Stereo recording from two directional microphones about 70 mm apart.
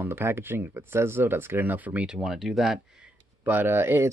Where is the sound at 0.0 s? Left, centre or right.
Right.